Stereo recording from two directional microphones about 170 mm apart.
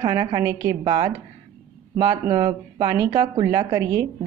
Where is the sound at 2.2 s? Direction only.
25° right (ahead or behind).